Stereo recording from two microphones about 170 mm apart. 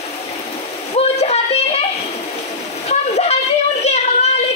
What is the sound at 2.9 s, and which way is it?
Train, 40° left (ahead or behind).